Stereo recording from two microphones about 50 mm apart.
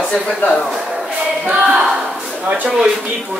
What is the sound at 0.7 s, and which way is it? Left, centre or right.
Music, centre.